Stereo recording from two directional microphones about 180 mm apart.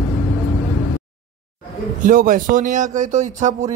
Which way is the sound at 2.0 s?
50° right (ahead or behind).